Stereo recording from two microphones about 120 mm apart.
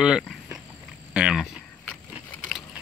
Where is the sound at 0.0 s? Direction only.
5° right (ahead or behind).